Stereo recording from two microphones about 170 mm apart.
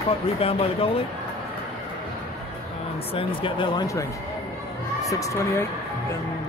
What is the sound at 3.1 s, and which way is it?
Speech, 30° left (ahead or behind).